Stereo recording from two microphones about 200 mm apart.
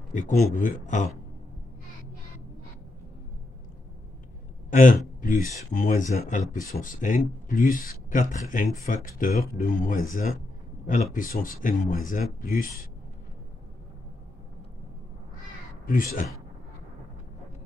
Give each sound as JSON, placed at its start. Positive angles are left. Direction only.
{"t": 0.1, "sound": "speech", "side_deg": 40}
{"t": 4.6, "sound": "a man's voice", "side_deg": 40}
{"t": 15.9, "sound": "speech", "side_deg": 45}